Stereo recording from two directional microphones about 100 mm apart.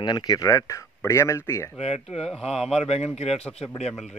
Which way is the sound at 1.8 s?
90° left.